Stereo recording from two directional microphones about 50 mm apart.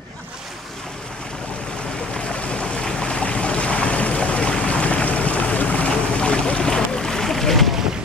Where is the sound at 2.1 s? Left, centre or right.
Left; by 7.8 s centre.